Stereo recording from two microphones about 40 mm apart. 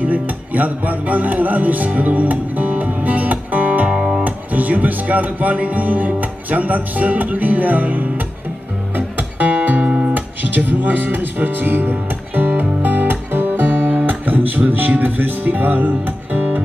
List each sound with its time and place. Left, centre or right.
0.0 s speech: right
2.0 s music: right
4.2 s speech: right
8.9 s music: right
15.0 s speech: right
16.3 s music: right